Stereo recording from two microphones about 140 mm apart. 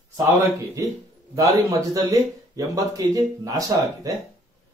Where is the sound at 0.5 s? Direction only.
25° right (ahead or behind).